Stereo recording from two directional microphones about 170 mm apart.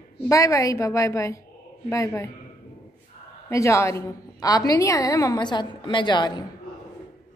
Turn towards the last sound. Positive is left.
turn(degrees=25)  # may be behind; listen again after turning